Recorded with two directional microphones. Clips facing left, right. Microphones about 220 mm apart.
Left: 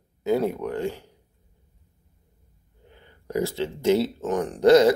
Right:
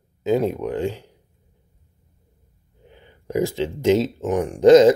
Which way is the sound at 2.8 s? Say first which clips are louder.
Right 4 dB; 15° right (ahead or behind).